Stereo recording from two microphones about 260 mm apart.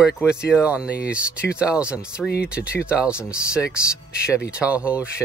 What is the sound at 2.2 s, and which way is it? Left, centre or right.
Speech, left.